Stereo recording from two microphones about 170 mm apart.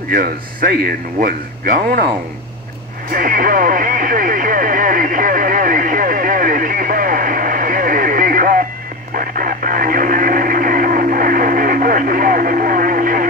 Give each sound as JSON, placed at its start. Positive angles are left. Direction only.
{"t": 0.1, "sound": "speech", "side_deg": -60}
{"t": 3.1, "sound": "radio", "side_deg": -55}